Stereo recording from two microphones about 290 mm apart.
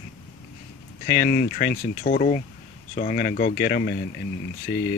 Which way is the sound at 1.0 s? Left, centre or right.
Left.